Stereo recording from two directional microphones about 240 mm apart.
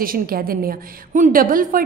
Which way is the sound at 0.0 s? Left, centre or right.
Right.